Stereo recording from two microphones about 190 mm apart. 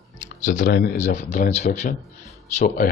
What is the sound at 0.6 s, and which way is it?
Speech, 55° left (ahead or behind).